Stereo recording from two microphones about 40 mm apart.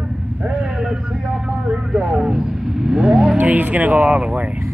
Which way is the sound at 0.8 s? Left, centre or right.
Centre.